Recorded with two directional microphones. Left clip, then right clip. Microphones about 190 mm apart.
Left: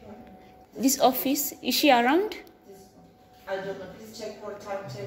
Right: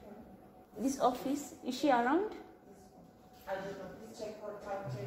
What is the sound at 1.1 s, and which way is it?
A woman's voice, 40° left (ahead or behind).